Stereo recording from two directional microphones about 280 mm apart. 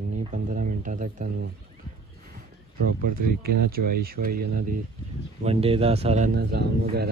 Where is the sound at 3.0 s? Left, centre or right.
Right.